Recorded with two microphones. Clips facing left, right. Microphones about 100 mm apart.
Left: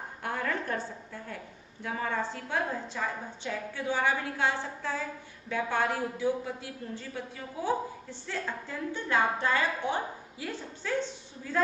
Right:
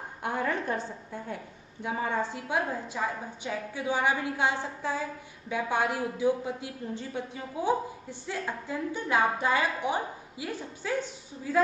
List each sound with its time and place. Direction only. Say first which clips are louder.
0.2 s a woman's voice: right 3 dB; 20° right (ahead or behind)